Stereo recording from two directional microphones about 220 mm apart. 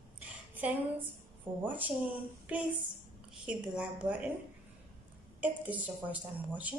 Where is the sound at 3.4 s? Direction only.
5° right (ahead or behind).